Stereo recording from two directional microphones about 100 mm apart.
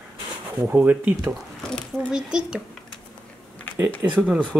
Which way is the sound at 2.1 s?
5° right (ahead or behind).